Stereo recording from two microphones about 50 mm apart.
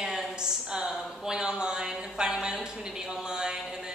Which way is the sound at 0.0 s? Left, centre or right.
Centre.